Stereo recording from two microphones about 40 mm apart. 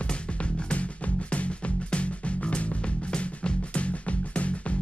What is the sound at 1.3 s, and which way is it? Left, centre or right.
Music, left.